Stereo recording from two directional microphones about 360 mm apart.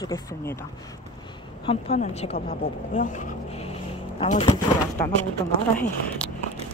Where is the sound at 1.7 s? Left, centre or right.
Centre.